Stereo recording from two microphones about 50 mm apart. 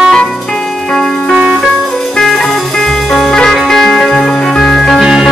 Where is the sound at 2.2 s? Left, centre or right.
Centre.